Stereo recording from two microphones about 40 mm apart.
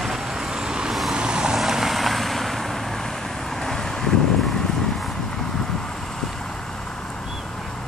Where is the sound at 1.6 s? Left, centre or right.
Centre.